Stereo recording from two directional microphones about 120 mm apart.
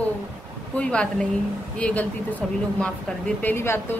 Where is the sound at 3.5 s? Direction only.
20° left (ahead or behind).